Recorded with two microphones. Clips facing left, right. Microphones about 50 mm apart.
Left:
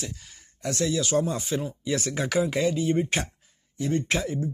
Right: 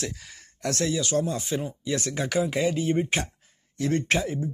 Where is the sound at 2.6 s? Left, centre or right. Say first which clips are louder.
Even; right.